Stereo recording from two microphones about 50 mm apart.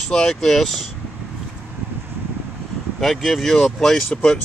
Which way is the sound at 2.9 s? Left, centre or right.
Centre.